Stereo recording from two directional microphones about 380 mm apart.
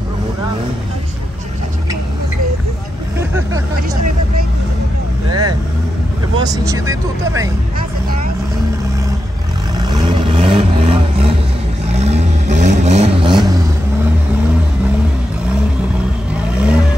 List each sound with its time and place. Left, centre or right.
3.2 s vehicle: centre
5.3 s speech: right
6.3 s speech: centre
9.8 s vehicle: centre
16.5 s vehicle: centre